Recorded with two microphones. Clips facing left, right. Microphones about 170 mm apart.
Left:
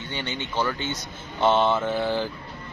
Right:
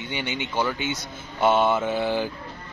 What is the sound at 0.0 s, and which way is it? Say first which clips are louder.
A man's voice: right 2 dB; 15° right (ahead or behind).